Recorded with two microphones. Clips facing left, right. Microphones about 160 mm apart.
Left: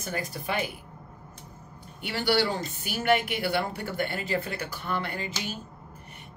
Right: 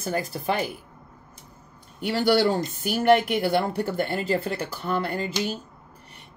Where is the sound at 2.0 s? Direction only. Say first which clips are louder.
Right 5 dB; 45° right (ahead or behind).